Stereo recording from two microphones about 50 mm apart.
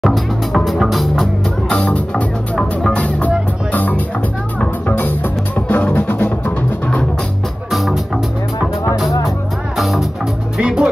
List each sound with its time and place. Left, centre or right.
0.0 s music: centre
1.7 s music: left
7.7 s music: centre
10.6 s music: centre